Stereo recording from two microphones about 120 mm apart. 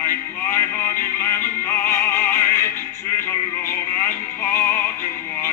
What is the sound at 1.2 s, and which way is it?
Music, 20° left (ahead or behind).